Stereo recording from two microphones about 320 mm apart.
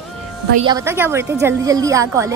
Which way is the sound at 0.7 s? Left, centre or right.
Centre.